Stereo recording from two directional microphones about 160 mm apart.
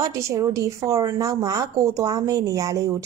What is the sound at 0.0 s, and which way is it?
Speech, 20° right (ahead or behind).